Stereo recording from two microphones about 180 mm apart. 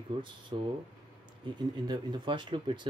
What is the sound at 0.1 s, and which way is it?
Speech, 30° right (ahead or behind).